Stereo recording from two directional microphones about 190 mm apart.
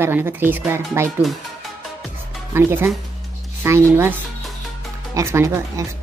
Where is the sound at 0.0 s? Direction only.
10° right (ahead or behind).